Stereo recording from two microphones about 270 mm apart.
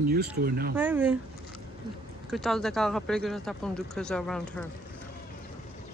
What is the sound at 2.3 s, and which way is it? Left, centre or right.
Speech, centre.